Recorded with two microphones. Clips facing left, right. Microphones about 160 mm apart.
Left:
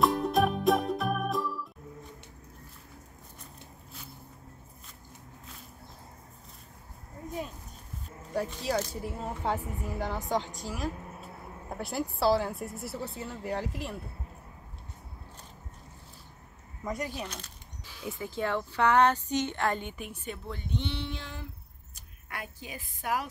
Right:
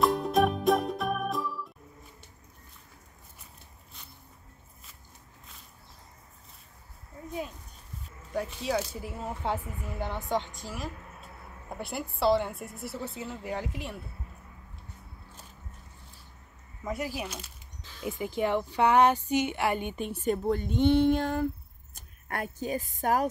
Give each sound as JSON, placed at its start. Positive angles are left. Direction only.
{"t": 0.0, "sound": "music", "side_deg": 0}
{"t": 8.3, "sound": "speech", "side_deg": 0}
{"t": 16.8, "sound": "a woman's voice", "side_deg": -5}
{"t": 20.0, "sound": "speech", "side_deg": -35}